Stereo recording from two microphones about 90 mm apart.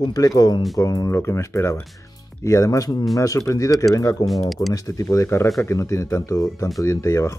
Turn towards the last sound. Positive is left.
turn(degrees=35)  # may be behind; listen again after turning